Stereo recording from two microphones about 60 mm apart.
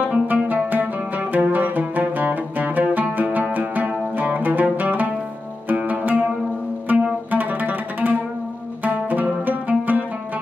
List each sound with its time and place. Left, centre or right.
0.0 s music: right